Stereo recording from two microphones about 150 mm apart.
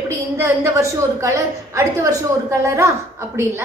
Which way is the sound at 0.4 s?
20° right (ahead or behind).